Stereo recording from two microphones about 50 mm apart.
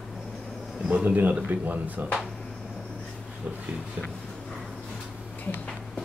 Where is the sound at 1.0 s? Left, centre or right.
Right.